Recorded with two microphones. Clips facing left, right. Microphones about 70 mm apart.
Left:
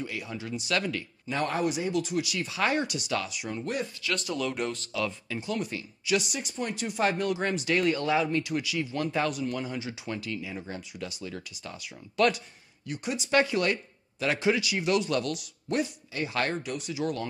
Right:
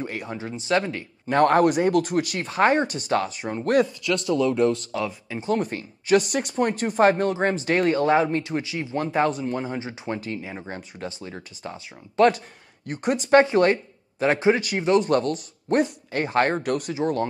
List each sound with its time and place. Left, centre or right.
0.0 s speech: right
1.2 s speech: right
4.9 s speech: right
12.8 s speech: right
16.9 s speech: right